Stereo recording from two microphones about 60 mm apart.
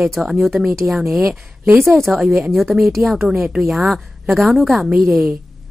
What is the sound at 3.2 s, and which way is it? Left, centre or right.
A woman's voice, centre.